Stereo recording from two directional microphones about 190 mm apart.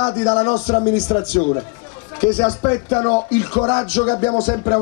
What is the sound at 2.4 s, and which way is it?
A man's voice, 30° left (ahead or behind).